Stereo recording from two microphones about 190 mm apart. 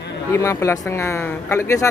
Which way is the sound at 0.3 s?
15° left (ahead or behind).